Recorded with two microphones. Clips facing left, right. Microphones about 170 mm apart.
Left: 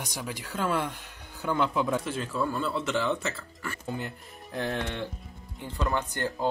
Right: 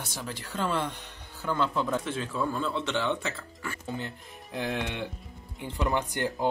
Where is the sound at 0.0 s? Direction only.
15° left (ahead or behind).